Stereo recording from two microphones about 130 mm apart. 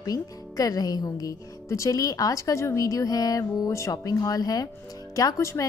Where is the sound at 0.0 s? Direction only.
30° left (ahead or behind).